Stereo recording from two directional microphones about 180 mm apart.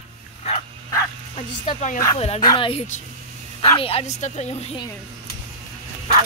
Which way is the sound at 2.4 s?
25° left (ahead or behind).